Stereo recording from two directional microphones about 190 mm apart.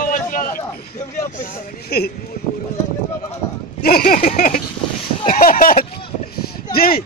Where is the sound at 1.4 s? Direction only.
55° left (ahead or behind).